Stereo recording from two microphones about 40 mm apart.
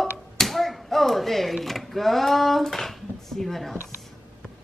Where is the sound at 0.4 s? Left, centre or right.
Centre.